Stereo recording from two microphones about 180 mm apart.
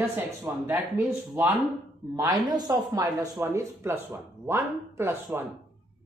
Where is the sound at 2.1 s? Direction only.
20° right (ahead or behind).